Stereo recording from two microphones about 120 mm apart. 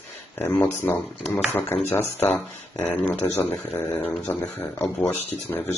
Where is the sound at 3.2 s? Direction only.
30° left (ahead or behind).